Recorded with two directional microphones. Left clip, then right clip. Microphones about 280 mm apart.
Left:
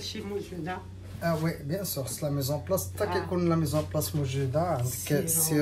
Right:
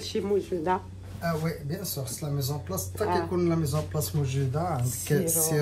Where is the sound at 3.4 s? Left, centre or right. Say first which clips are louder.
Even; left.